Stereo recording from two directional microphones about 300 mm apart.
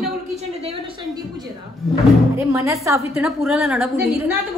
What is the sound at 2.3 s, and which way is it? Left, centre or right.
A woman's voice, centre.